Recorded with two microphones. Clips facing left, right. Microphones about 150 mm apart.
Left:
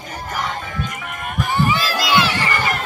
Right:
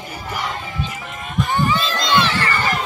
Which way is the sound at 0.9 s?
55° left (ahead or behind).